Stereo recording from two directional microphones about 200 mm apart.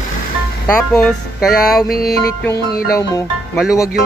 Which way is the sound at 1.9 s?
50° left (ahead or behind).